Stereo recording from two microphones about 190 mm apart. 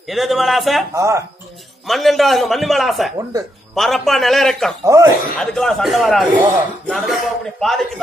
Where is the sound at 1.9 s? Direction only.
Centre (ahead or behind).